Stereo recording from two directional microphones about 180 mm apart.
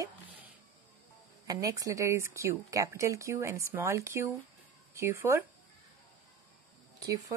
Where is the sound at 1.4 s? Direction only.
20° right (ahead or behind).